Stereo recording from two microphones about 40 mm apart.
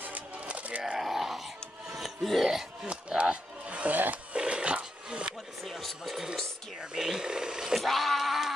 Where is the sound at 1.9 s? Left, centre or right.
Centre.